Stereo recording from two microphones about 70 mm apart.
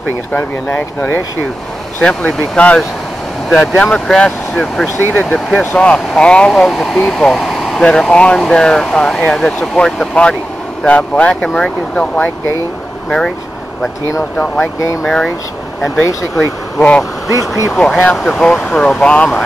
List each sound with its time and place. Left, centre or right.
0.4 s speech: left
3.4 s speech: centre
3.7 s speech: centre
5.3 s speech: left
6.5 s speech: centre
15.0 s speech: centre
16.0 s speech: left
17.3 s speech: left
17.7 s speech: centre